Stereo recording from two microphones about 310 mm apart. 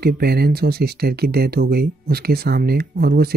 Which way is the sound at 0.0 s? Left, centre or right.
Right.